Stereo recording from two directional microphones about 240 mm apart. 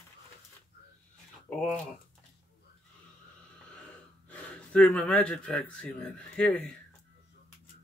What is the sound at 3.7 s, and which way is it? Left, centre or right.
Speech, centre.